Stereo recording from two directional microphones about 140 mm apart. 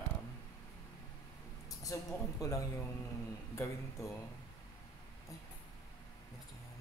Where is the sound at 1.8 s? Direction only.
25° left (ahead or behind).